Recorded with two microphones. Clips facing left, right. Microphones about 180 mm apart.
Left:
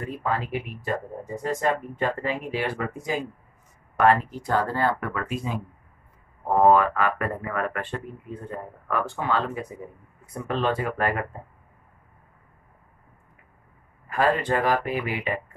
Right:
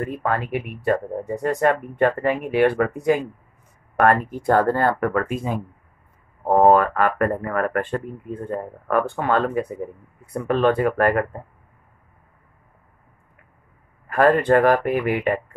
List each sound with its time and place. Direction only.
0.0 s speech: 60° right (ahead or behind)
14.0 s speech: 55° right (ahead or behind)